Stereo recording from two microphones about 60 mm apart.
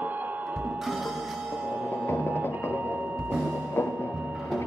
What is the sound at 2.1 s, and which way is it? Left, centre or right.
Music, right.